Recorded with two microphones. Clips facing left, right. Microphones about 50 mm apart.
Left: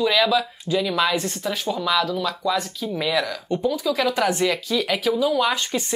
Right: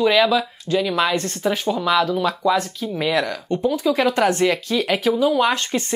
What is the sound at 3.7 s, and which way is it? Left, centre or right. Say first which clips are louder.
Speech: right 4 dB; centre.